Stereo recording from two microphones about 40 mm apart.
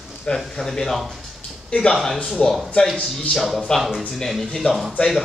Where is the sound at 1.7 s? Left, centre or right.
Left.